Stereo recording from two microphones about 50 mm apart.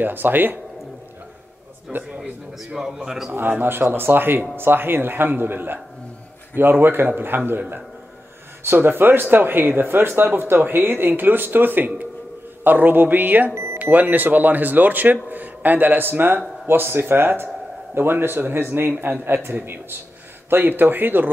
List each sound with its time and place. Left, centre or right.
0.0 s speech: right
1.9 s speech: right
2.6 s a man's voice: centre
3.3 s speech: right
8.6 s speech: right